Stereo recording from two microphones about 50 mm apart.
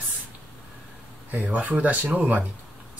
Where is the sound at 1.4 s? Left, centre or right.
Right.